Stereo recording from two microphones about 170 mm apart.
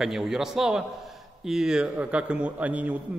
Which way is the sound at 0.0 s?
Centre (ahead or behind).